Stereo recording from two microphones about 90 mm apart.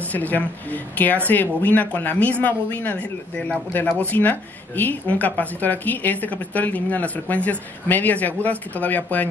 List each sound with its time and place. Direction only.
0.0 s speech: 20° left (ahead or behind)